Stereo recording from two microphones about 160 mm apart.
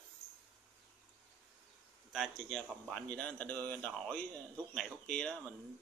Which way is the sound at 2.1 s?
Centre (ahead or behind).